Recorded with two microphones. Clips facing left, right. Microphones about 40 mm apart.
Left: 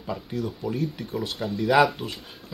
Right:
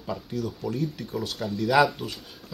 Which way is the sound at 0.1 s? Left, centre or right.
Centre.